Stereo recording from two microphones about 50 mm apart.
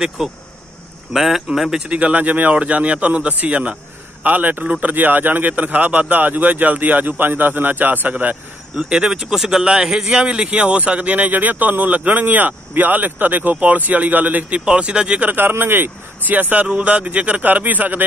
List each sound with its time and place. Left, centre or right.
0.2 s speech: centre
1.9 s speech: right
8.7 s speech: centre; by 14.6 s right
14.6 s speech: right
15.2 s speech: right